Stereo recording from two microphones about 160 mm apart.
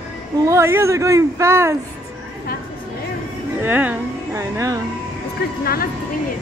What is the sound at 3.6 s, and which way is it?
Speech, 10° right (ahead or behind).